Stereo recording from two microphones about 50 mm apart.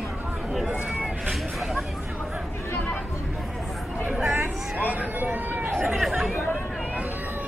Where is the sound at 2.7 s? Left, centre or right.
Left.